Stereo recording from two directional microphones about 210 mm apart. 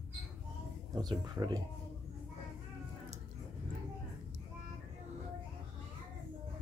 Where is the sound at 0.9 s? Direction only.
20° right (ahead or behind).